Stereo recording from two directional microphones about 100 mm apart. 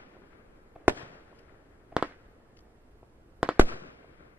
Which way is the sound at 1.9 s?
15° right (ahead or behind).